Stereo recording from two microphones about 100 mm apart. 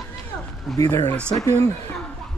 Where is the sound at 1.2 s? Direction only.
10° left (ahead or behind).